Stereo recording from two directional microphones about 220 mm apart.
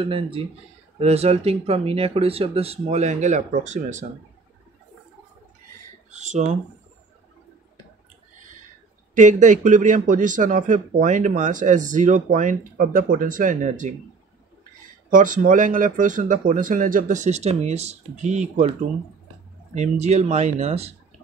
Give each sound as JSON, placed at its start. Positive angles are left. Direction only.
{"t": 0.0, "sound": "speech", "side_deg": -25}
{"t": 6.1, "sound": "speech", "side_deg": -30}
{"t": 9.1, "sound": "speech", "side_deg": -35}
{"t": 15.0, "sound": "speech", "side_deg": -35}